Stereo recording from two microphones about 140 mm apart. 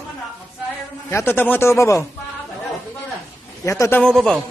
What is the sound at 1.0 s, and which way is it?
A man's voice, 15° left (ahead or behind).